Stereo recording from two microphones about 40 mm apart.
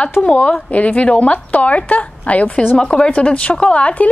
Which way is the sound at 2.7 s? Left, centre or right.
Left.